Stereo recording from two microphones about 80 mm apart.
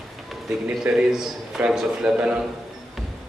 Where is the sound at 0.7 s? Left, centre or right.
Centre.